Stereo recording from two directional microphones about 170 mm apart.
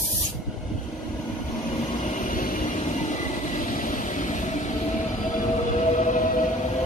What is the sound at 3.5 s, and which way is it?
Vehicle, 50° left (ahead or behind).